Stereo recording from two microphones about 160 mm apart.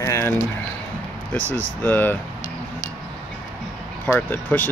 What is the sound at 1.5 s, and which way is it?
Speech, 10° left (ahead or behind).